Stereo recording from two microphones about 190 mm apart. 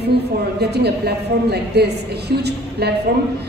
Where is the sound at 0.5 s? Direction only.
60° right (ahead or behind).